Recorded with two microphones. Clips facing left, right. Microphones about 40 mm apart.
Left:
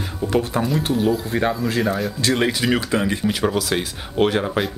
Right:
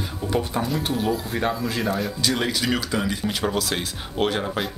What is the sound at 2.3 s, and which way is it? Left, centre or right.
Speech, centre.